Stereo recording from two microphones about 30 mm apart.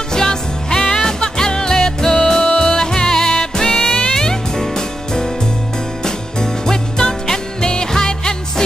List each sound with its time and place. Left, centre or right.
0.1 s music: left